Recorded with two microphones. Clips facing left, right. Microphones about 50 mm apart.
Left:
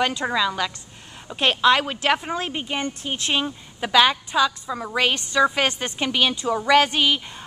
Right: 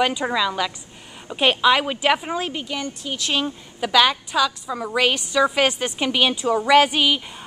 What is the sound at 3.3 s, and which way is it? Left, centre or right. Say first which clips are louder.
A woman's voice: right 1 dB; centre.